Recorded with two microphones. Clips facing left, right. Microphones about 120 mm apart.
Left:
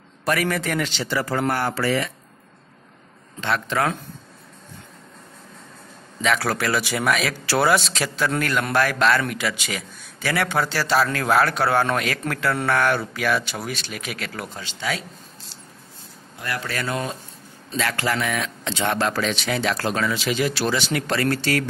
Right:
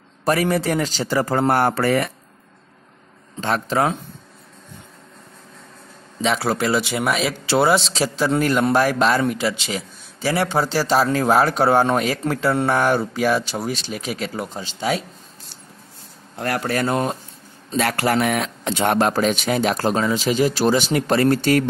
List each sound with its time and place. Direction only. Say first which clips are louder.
0.2 s a man's voice: right 4 dB; 30° right (ahead or behind); by 2.0 s 50° right (ahead or behind)
3.3 s a man's voice: right 3 dB; 35° right (ahead or behind)
6.2 s a man's voice: right 2 dB; 25° right (ahead or behind)
9.4 s a man's voice: right 4 dB; 25° right (ahead or behind)
13.1 s a man's voice: right 4 dB; 35° right (ahead or behind)
16.3 s speech: right 6 dB; 60° right (ahead or behind)
16.7 s a man's voice: right 6 dB; 40° right (ahead or behind)
18.2 s speech: right 5 dB; 55° right (ahead or behind)